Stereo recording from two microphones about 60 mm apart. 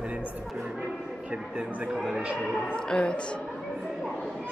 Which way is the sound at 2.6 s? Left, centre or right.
Centre.